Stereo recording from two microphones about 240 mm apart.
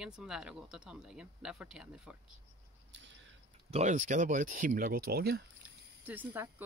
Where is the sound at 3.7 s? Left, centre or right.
Right.